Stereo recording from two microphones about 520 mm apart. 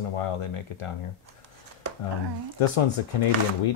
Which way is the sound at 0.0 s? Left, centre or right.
Left.